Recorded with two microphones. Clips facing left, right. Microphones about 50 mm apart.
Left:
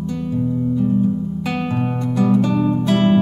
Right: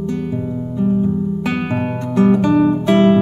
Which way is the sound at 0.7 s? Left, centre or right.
Right.